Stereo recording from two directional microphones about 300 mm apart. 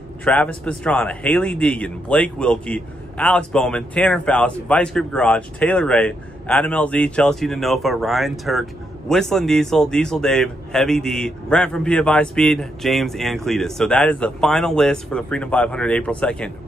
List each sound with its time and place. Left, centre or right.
0.2 s a man's voice: centre